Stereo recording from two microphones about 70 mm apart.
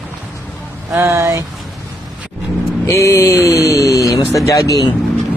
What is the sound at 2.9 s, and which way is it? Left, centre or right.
Speech, left.